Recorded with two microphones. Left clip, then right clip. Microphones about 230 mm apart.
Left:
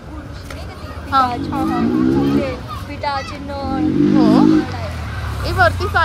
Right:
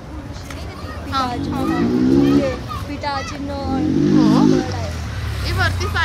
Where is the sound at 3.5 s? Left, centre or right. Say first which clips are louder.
Left 2 dB; centre.